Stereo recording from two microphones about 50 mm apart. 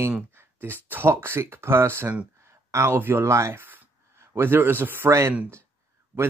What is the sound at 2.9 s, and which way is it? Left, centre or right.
Speech, right.